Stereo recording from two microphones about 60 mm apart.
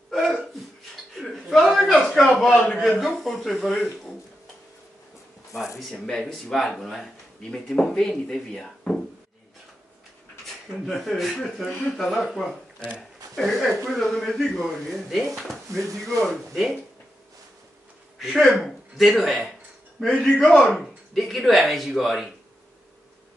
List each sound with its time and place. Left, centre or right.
0.1 s hiccup: centre
1.1 s a sound: centre
3.1 s speech: centre
5.8 s speech: centre
10.9 s speech: centre
18.5 s speech: centre